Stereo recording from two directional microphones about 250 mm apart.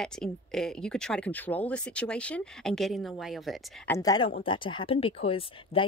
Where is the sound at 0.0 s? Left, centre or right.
Centre.